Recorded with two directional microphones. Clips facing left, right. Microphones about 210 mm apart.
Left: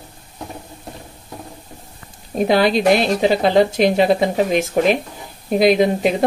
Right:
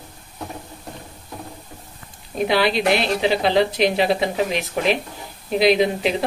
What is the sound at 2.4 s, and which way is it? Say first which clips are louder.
A woman's voice: left 4 dB; 45° left (ahead or behind).